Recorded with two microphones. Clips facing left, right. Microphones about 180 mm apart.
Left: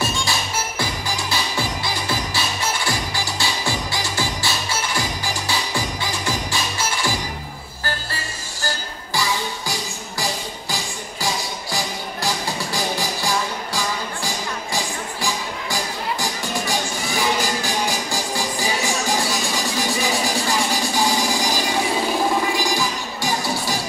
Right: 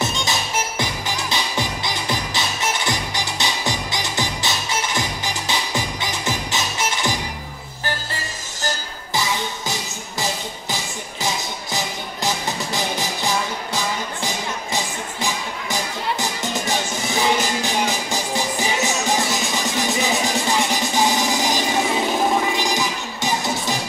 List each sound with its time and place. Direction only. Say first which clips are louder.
0.0 s music: even; 20° right (ahead or behind)
8.6 s music: right 1 dB; 20° right (ahead or behind)